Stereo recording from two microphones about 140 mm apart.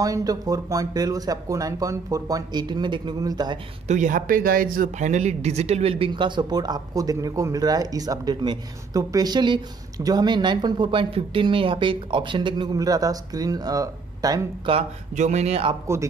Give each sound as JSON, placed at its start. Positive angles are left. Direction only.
{"t": 0.0, "sound": "speech", "side_deg": -25}
{"t": 3.8, "sound": "a man's voice", "side_deg": -60}
{"t": 14.7, "sound": "a man's voice", "side_deg": -40}
{"t": 15.1, "sound": "a man's voice", "side_deg": -55}